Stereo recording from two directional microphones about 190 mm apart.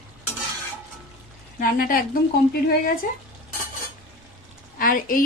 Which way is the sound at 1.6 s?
50° left (ahead or behind).